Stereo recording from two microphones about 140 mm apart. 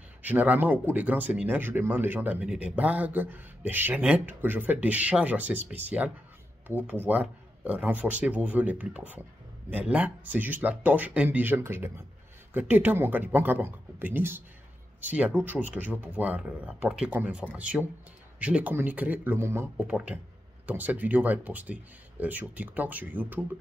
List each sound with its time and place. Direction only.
0.2 s speech: 10° right (ahead or behind)